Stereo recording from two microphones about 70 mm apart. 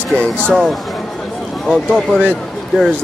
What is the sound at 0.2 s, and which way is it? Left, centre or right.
Speech, centre.